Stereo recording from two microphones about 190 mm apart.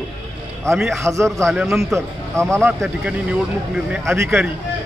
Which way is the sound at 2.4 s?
15° right (ahead or behind).